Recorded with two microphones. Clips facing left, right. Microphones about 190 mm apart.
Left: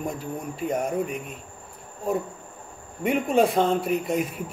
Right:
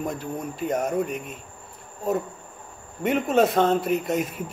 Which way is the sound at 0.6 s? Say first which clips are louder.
Right 1 dB; 10° left (ahead or behind).